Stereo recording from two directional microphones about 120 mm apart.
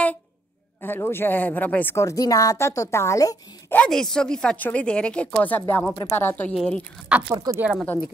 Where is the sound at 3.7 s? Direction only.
10° left (ahead or behind).